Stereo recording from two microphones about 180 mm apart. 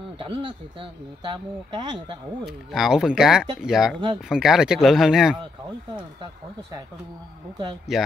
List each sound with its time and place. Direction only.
0.2 s speech: 30° right (ahead or behind)
2.4 s speech: centre (ahead or behind)
7.9 s speech: centre (ahead or behind)